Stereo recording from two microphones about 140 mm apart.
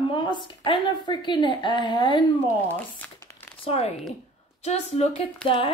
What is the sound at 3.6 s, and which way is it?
Speech, 45° left (ahead or behind).